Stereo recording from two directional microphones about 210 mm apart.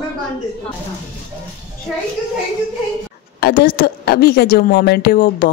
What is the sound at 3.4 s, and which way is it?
A woman's voice, 45° left (ahead or behind).